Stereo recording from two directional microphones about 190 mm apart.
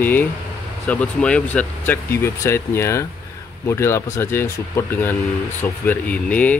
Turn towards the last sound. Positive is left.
turn(degrees=5)  # may be behind; listen again after turning